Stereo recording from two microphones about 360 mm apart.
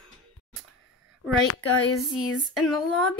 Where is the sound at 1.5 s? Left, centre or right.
Left.